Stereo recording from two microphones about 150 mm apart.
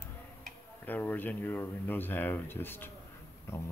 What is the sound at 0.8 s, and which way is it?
Speech, 10° left (ahead or behind).